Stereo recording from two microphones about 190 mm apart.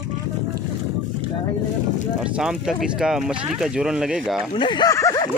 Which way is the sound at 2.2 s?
5° right (ahead or behind).